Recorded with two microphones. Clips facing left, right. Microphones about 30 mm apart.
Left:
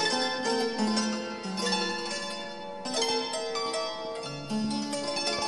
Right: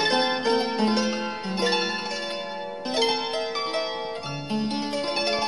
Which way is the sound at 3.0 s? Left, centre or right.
Right.